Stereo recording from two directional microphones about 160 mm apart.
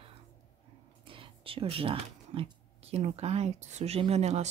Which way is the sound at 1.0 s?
35° right (ahead or behind).